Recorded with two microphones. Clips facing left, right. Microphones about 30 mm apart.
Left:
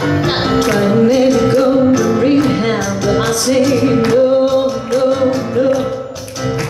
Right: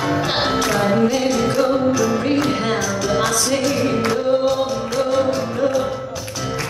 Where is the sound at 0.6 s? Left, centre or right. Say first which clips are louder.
Left 6 dB; left.